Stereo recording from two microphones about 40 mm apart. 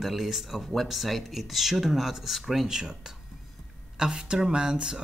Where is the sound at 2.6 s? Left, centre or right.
Centre.